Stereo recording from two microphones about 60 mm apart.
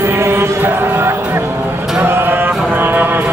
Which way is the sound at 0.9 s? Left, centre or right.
Right.